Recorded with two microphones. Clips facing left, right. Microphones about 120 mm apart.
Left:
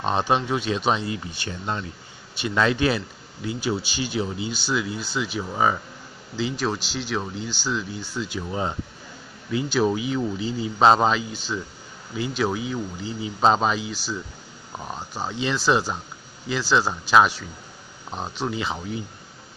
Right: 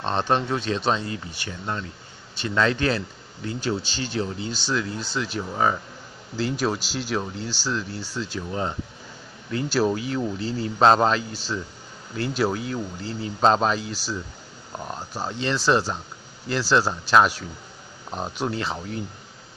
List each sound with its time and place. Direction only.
0.0 s speech: 10° left (ahead or behind)
1.3 s speech: 20° left (ahead or behind); by 5.8 s 5° left (ahead or behind)
6.3 s speech: 5° right (ahead or behind)
8.5 s speech: 15° left (ahead or behind)
9.7 s speech: centre (ahead or behind)